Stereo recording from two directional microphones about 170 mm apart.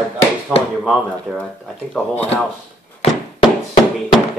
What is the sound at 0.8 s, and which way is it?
Speech, centre (ahead or behind).